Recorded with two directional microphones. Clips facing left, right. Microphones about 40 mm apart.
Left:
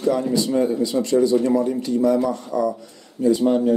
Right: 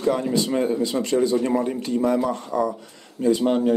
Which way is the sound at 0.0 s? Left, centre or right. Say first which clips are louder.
Left 2 dB; right.